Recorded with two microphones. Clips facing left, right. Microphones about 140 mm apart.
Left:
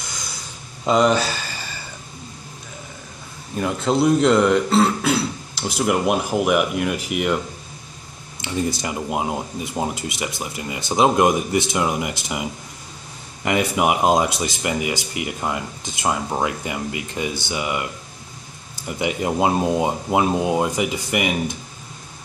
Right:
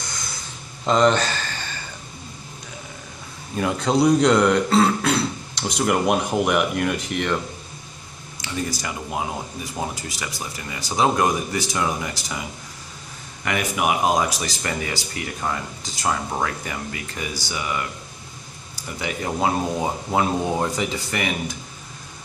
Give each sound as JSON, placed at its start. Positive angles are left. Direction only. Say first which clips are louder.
{"t": 0.8, "sound": "a sound", "louder": "left 1 dB", "side_deg": 10}
{"t": 3.5, "sound": "speech", "louder": "even", "side_deg": 0}
{"t": 8.4, "sound": "speech", "louder": "left 4 dB", "side_deg": 25}
{"t": 18.9, "sound": "speech", "louder": "left 5 dB", "side_deg": 20}